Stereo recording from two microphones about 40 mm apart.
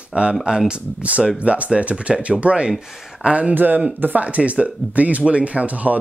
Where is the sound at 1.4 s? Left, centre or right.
Right.